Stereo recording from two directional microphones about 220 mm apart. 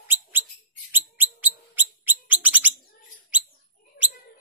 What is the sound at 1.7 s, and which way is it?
Bird, 10° right (ahead or behind).